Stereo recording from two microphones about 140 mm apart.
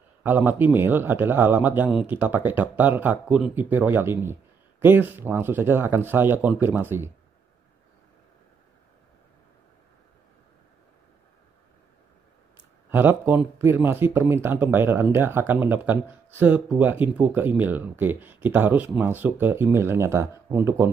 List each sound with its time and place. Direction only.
0.2 s a man's voice: 10° right (ahead or behind)
12.9 s a man's voice: 15° right (ahead or behind)